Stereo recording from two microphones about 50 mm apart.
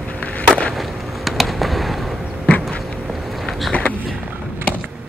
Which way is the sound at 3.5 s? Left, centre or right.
Centre.